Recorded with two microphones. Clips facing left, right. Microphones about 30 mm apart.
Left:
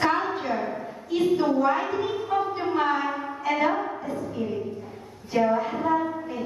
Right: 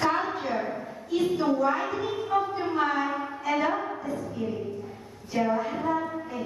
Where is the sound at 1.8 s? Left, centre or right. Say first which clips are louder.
Left 2 dB; centre.